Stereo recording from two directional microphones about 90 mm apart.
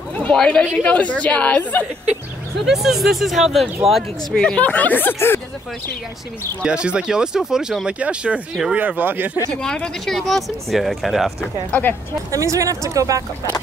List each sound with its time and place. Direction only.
0.1 s a woman's voice: 10° left (ahead or behind)
2.6 s speech: 5° right (ahead or behind)
4.4 s a woman's voice: 15° left (ahead or behind)
6.6 s speech: 10° right (ahead or behind)
9.5 s speech: 10° left (ahead or behind)
11.7 s a woman's voice: 15° left (ahead or behind)
12.3 s speech: 35° right (ahead or behind)